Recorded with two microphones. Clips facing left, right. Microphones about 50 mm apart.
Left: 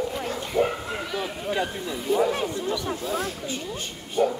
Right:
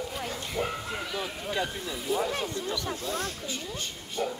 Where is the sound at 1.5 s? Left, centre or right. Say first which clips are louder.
Left 5 dB; left.